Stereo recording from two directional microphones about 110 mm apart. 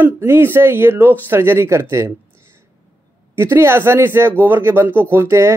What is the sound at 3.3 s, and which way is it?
Speech, 20° right (ahead or behind).